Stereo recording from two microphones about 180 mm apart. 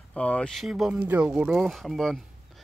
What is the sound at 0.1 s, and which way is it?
Speech, 5° left (ahead or behind).